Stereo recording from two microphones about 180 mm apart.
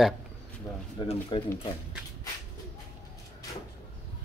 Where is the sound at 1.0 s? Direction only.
30° left (ahead or behind).